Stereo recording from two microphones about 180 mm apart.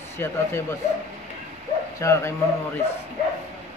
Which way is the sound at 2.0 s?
15° left (ahead or behind).